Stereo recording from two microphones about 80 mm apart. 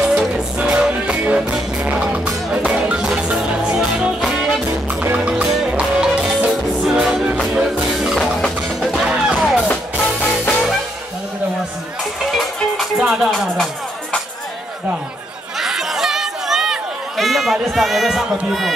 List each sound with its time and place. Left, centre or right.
0.6 s music: centre
9.0 s music: centre
9.7 s music: centre
13.0 s music: centre
15.6 s run: centre